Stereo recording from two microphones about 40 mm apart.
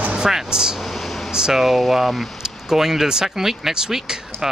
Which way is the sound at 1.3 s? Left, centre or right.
Centre.